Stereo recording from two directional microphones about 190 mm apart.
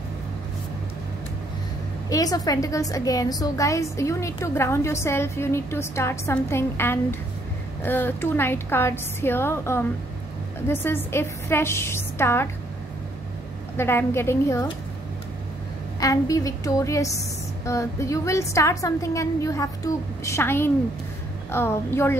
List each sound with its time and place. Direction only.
2.0 s a woman's voice: 20° left (ahead or behind)
13.7 s a woman's voice: 10° left (ahead or behind)
16.0 s a woman's voice: 20° left (ahead or behind)